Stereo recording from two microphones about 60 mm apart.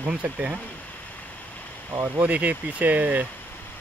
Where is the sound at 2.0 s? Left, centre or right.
Right.